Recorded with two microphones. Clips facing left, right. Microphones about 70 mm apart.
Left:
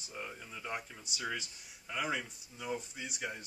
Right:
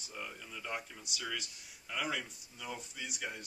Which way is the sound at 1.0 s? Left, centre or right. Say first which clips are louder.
Left 2 dB; left.